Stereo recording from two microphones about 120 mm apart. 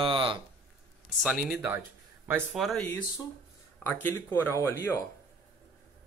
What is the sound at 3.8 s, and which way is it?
Speech, 15° left (ahead or behind).